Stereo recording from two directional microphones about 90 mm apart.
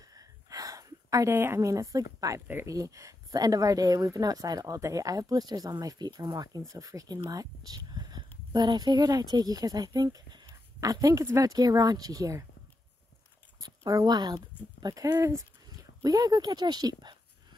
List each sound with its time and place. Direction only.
0.1 s a sound: 40° right (ahead or behind)
1.3 s a woman's voice: 25° right (ahead or behind)
2.4 s speech: 25° right (ahead or behind)
2.7 s a woman's voice: 40° right (ahead or behind)
13.6 s speech: 45° right (ahead or behind)
15.0 s speech: 30° right (ahead or behind); by 17.2 s 50° right (ahead or behind)